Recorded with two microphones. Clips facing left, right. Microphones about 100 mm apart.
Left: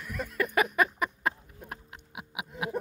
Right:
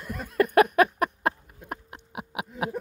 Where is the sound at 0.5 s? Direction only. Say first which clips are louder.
Right 7 dB; 60° right (ahead or behind).